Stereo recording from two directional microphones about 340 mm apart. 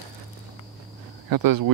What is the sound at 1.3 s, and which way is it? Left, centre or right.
Speech, right.